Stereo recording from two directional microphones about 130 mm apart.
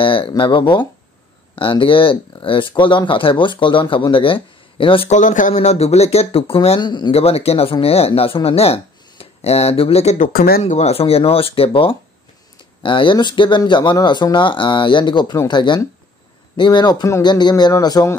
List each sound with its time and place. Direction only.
0.0 s speech: 45° left (ahead or behind)
5.1 s speech: 80° left; by 6.8 s 50° left (ahead or behind)
6.8 s speech: 35° left (ahead or behind)
7.2 s speech: 50° left (ahead or behind)
10.1 s speech: 70° left (ahead or behind); by 18.1 s 25° left (ahead or behind)